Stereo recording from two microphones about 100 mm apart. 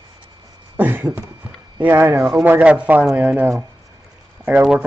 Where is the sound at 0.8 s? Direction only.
20° right (ahead or behind).